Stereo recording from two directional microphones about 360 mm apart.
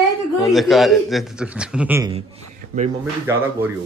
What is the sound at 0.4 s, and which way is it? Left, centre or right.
Speech, centre.